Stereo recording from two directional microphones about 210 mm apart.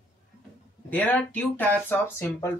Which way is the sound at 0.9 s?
10° left (ahead or behind).